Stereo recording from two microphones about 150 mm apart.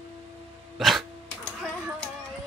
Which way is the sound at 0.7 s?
Centre (ahead or behind).